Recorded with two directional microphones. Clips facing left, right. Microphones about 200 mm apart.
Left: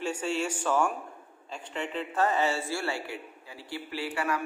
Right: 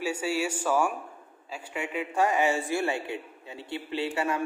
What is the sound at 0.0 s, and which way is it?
A man's voice, 10° right (ahead or behind).